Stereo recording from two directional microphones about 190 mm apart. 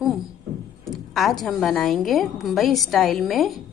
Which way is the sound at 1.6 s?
Centre (ahead or behind).